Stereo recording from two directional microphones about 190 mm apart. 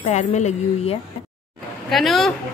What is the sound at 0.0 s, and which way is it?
Speech, 35° left (ahead or behind).